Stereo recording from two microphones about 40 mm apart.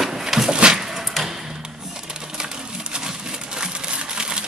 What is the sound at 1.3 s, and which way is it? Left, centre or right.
Music, centre.